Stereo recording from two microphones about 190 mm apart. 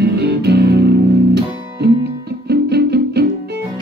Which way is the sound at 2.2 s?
60° right (ahead or behind).